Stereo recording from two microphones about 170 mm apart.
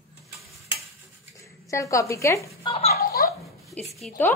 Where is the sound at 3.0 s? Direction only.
60° left (ahead or behind).